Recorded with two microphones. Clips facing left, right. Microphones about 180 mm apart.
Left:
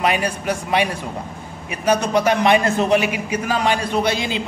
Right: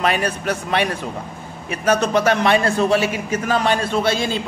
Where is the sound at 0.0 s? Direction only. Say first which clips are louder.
Even; 10° left (ahead or behind).